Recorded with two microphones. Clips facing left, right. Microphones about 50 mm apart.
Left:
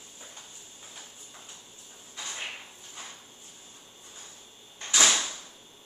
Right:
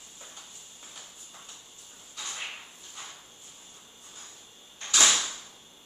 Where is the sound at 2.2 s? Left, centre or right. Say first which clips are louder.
Left 1 dB; left.